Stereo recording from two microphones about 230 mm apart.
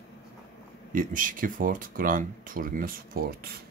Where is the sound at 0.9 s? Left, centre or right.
Right.